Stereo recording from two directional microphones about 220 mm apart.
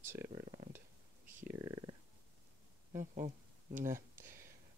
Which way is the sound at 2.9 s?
35° right (ahead or behind).